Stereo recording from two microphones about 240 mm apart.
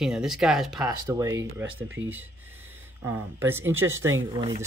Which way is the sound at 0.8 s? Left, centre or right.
Centre.